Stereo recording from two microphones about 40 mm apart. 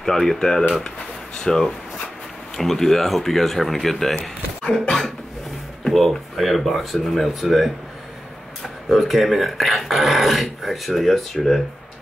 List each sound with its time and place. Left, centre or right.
0.0 s speech: centre
4.2 s speech: left
5.9 s speech: centre
8.9 s speech: centre